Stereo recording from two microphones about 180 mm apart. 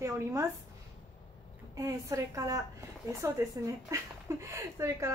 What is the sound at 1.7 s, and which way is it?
A woman's voice, 15° right (ahead or behind).